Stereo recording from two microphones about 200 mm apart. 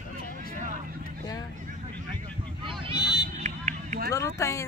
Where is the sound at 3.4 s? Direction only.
40° right (ahead or behind).